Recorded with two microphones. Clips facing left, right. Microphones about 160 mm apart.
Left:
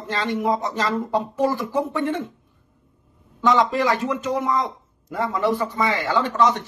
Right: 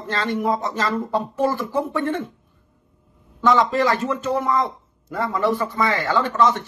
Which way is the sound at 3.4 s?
15° left (ahead or behind).